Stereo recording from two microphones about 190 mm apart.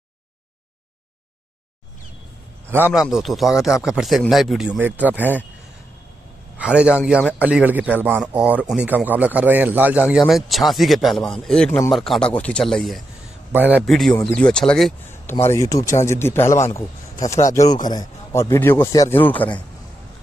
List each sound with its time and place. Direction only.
2.7 s speech: 5° right (ahead or behind)
6.6 s a man's voice: 5° right (ahead or behind)
13.9 s speech: centre (ahead or behind)
15.4 s a man's voice: 15° left (ahead or behind)